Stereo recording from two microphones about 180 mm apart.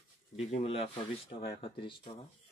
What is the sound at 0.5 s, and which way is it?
Speech, 35° left (ahead or behind).